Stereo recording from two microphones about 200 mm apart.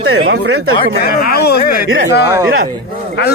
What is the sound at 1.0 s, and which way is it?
Speech, 50° left (ahead or behind).